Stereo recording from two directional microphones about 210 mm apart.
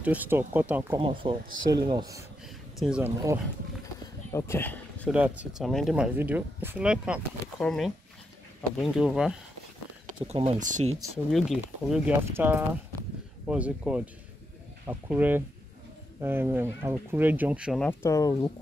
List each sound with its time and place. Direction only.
0.0 s speech: 5° right (ahead or behind)
0.9 s speech: 25° right (ahead or behind)
2.4 s a sound: 5° right (ahead or behind)
3.8 s a sound: 15° left (ahead or behind)
5.1 s speech: 5° right (ahead or behind)
10.2 s speech: 30° right (ahead or behind)
11.6 s speech: 10° right (ahead or behind)
17.8 s speech: 15° left (ahead or behind)